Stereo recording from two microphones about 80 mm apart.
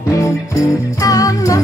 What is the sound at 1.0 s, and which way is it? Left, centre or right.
Music, left.